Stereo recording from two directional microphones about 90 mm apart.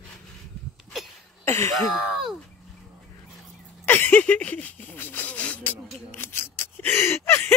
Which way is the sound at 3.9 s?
20° left (ahead or behind).